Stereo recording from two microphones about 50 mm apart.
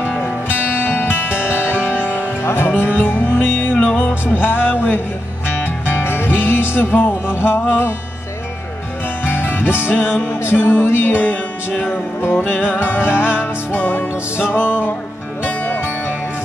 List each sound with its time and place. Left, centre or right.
0.7 s music: left
2.4 s music: left
3.7 s music: left
4.3 s music: left
9.3 s music: left
11.9 s music: left